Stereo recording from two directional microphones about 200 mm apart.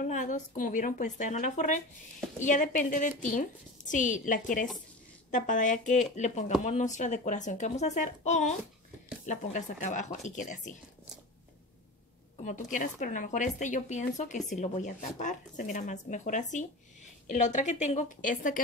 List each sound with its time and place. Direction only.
0.0 s speech: 40° left (ahead or behind)
12.7 s speech: 40° left (ahead or behind)